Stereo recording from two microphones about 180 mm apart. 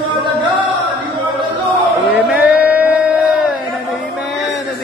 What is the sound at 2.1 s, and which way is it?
Music, 5° right (ahead or behind).